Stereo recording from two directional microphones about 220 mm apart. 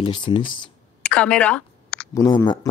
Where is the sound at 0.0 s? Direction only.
20° left (ahead or behind).